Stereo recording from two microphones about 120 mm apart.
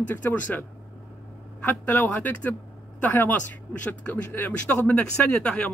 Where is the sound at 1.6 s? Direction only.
15° left (ahead or behind).